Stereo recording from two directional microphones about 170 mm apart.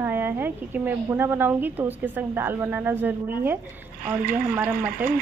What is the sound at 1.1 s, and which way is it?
Speech, 10° right (ahead or behind).